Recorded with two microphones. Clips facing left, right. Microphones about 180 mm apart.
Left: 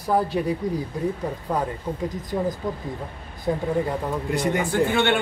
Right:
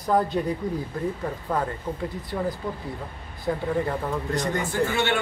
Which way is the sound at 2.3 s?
15° left (ahead or behind).